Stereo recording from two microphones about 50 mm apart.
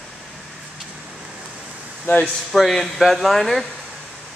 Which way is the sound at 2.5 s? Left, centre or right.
Centre.